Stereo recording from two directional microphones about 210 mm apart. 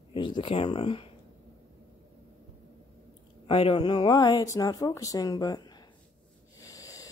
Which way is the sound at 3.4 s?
25° left (ahead or behind).